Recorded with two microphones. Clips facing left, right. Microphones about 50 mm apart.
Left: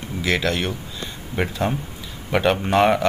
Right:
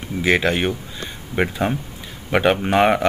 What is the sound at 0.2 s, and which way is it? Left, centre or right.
Speech, right.